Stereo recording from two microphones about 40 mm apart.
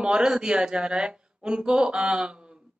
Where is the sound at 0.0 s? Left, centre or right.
Right.